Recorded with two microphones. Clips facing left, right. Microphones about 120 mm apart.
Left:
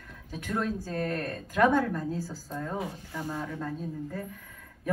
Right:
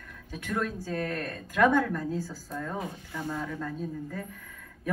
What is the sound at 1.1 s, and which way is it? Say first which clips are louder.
A woman's voice: left 2 dB; 30° left (ahead or behind).